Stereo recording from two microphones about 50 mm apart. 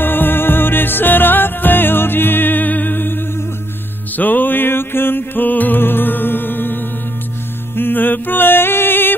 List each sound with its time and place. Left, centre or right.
0.0 s music: left